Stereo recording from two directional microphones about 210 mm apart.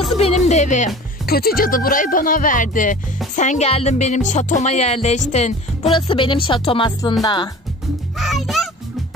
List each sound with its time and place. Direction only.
0.2 s speech: 30° left (ahead or behind)
8.2 s a child's voice: centre (ahead or behind)